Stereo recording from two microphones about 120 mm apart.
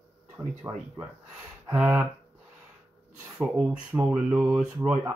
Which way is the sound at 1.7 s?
15° right (ahead or behind).